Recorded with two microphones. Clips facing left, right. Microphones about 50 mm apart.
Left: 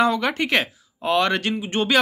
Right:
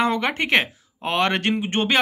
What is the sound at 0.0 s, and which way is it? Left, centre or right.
Speech, right.